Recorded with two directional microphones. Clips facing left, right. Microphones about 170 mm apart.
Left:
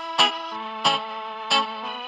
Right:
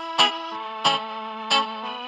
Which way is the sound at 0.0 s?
Centre (ahead or behind).